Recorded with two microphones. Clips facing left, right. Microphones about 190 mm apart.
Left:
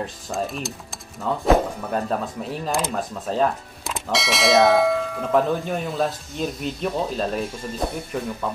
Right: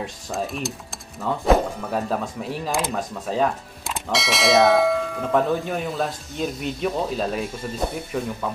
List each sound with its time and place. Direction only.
0.0 s speech: centre (ahead or behind)